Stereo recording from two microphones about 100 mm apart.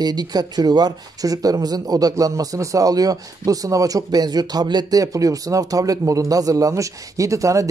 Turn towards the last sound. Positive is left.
turn(degrees=-30)  # may be behind; listen again after turning